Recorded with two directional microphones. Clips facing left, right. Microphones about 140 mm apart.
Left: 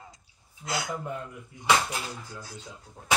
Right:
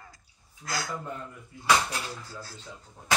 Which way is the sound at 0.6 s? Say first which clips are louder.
Left 2 dB; 20° left (ahead or behind).